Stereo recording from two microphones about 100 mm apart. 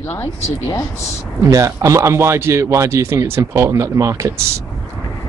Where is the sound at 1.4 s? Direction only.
35° right (ahead or behind).